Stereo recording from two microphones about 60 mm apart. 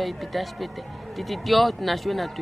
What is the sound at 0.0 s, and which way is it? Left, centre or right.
Speech, centre.